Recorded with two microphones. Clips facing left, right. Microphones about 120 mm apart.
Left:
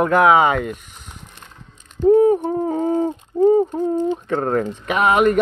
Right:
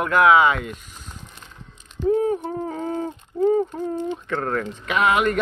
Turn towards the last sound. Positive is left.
turn(degrees=40)  # may be behind; listen again after turning